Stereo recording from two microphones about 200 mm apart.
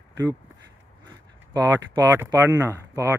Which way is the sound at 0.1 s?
15° right (ahead or behind).